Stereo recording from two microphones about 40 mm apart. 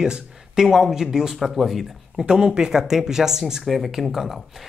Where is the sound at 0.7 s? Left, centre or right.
Centre.